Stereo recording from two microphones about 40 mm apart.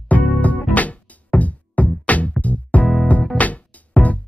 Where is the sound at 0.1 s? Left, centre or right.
Left.